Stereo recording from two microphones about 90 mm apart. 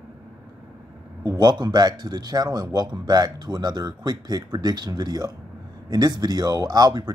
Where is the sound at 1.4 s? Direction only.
50° right (ahead or behind).